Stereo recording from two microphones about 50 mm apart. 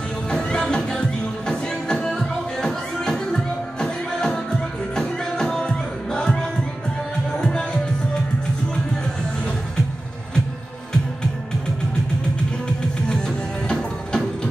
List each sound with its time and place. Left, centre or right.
0.3 s music: centre
13.7 s music: centre